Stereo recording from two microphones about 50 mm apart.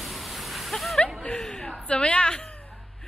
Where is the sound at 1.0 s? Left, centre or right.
Centre.